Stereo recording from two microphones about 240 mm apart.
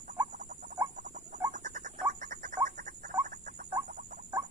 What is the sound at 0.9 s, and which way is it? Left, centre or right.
Rodents, right.